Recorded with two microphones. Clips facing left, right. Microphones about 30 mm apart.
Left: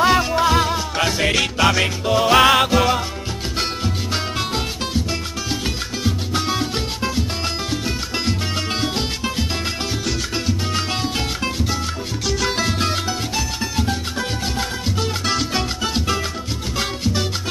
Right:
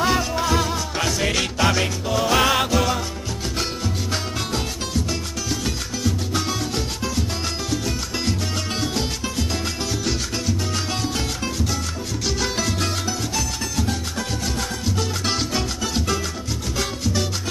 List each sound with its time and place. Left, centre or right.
0.0 s music: left
1.3 s music: centre
2.0 s music: left
15.5 s music: left